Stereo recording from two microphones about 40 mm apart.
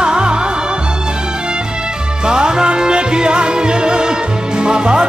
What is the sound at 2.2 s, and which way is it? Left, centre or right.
Music, centre.